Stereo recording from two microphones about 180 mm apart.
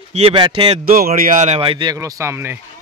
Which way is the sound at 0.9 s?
55° right (ahead or behind).